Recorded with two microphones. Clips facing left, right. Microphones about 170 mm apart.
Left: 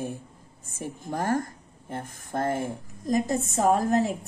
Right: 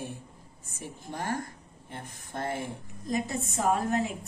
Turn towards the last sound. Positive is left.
turn(degrees=35)  # may be behind; listen again after turning